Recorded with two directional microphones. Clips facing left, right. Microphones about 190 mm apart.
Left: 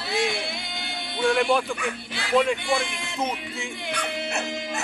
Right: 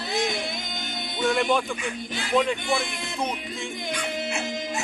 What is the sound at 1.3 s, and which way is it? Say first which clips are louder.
Speech: left 1 dB; centre (ahead or behind).